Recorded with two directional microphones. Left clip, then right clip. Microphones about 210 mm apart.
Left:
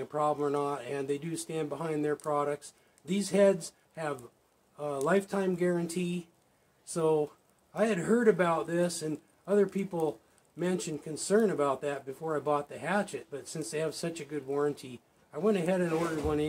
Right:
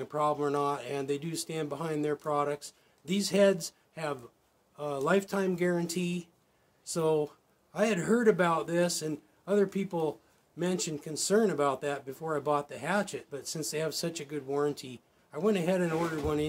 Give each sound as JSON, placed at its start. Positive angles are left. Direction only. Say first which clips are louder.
{"t": 0.0, "sound": "speech", "louder": "even", "side_deg": -15}